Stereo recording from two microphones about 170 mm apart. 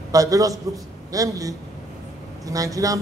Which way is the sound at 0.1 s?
20° right (ahead or behind).